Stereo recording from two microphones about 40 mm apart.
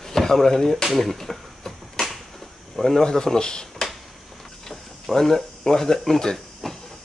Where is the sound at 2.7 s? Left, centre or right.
Centre.